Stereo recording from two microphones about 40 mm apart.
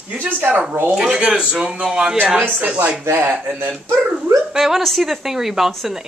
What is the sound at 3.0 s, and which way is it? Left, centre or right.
Speech, right.